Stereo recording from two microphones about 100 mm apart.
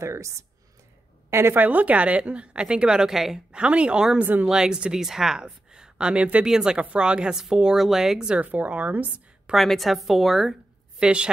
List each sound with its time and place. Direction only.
0.0 s speech: 30° right (ahead or behind); by 9.6 s 15° right (ahead or behind)
9.6 s a woman's voice: centre (ahead or behind)